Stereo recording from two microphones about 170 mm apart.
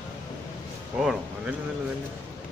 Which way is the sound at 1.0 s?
5° right (ahead or behind).